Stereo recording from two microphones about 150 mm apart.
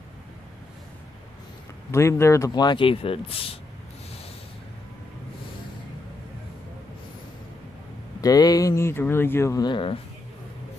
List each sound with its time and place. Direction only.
1.9 s speech: 20° left (ahead or behind); by 3.5 s 40° left (ahead or behind)
8.2 s speech: 25° left (ahead or behind)